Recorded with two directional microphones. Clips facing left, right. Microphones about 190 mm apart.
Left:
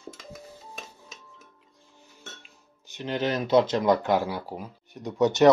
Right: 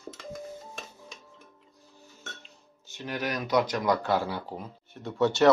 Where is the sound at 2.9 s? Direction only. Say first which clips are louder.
Left 5 dB; 20° left (ahead or behind).